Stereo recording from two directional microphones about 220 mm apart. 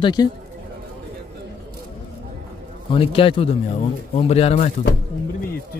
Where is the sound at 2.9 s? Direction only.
25° left (ahead or behind).